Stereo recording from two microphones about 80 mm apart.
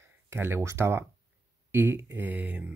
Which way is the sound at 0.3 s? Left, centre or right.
Right.